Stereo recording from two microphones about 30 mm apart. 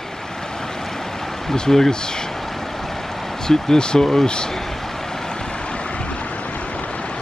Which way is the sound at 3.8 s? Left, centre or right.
Left.